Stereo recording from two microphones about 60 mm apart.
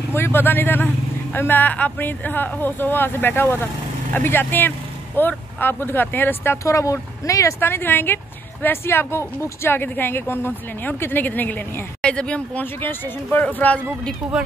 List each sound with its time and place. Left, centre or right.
0.1 s speech: left
6.6 s speech: left
7.6 s speech: left
12.0 s speech: centre
12.8 s speech: left
14.2 s speech: centre